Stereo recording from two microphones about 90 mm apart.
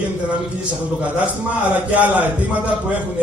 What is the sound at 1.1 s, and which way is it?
A man's voice, 15° right (ahead or behind).